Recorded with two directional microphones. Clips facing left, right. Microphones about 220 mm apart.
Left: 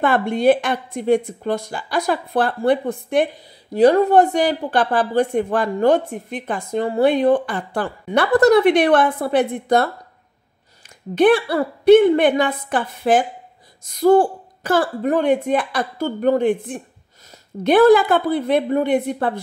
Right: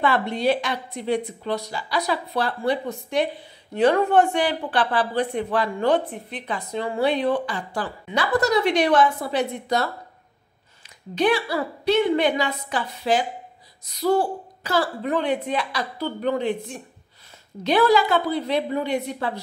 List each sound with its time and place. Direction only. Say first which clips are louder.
0.0 s speech: left 5 dB; 50° left (ahead or behind)
3.7 s speech: left 5 dB; 35° left (ahead or behind); by 9.8 s 55° left (ahead or behind)
11.1 s speech: left 7 dB; 55° left (ahead or behind)